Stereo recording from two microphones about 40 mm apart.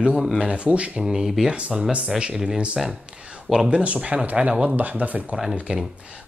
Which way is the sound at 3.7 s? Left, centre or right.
Right.